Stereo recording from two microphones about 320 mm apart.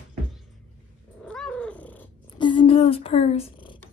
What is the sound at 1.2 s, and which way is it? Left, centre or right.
Cat, centre.